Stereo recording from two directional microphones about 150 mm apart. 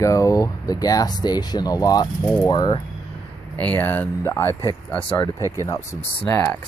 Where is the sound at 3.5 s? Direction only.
10° left (ahead or behind).